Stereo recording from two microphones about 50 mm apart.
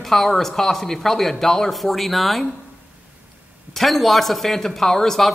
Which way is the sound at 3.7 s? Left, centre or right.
Centre.